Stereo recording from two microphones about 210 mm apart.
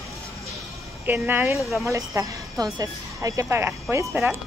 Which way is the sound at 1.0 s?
10° right (ahead or behind).